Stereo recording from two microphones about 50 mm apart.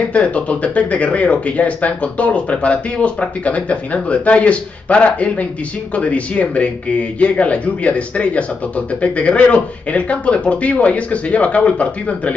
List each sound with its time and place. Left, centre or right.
0.1 s speech: left